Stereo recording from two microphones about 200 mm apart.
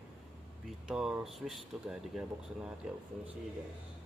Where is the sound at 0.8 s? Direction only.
5° right (ahead or behind).